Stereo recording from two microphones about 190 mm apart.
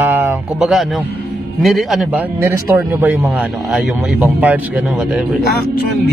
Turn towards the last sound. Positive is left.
turn(degrees=-10)  # may be behind; listen again after turning